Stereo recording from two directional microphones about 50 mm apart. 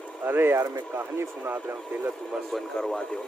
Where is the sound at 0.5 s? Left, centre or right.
Right.